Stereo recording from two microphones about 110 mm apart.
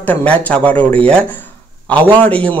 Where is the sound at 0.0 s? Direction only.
15° left (ahead or behind).